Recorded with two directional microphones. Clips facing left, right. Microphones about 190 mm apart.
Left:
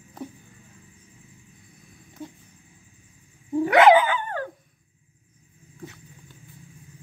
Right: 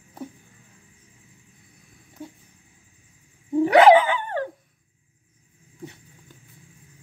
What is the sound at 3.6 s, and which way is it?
Dog, 30° right (ahead or behind).